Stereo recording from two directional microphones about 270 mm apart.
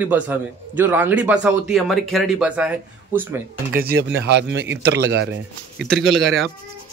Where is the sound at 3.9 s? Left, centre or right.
Right.